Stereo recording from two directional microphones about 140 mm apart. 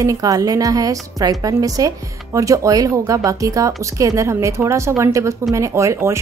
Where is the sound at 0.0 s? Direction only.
25° right (ahead or behind).